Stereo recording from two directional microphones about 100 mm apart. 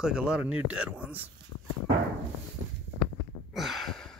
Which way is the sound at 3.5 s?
Centre (ahead or behind).